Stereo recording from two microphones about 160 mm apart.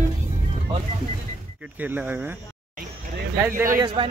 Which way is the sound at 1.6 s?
10° right (ahead or behind).